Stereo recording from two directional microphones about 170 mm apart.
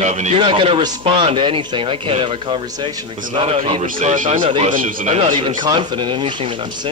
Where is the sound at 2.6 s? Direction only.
20° right (ahead or behind).